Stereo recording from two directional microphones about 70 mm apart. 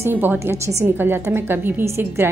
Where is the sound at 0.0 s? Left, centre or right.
Right.